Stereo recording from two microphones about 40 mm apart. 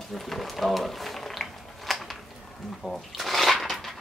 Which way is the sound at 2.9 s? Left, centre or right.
Centre.